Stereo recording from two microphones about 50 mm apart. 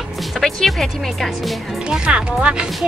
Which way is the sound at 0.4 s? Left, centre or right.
Centre.